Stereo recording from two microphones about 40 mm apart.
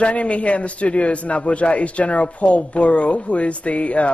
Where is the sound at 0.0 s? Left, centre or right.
Left.